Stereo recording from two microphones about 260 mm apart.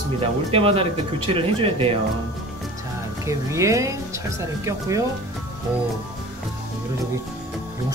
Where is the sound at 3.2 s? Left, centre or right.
Centre.